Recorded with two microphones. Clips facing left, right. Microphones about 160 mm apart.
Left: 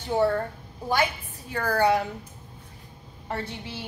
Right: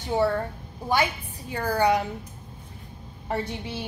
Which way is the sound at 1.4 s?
15° right (ahead or behind).